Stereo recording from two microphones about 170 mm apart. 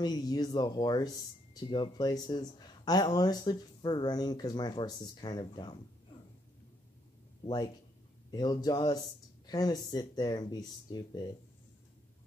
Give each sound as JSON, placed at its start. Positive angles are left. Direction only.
{"t": 0.0, "sound": "speech", "side_deg": 25}
{"t": 8.3, "sound": "speech", "side_deg": 25}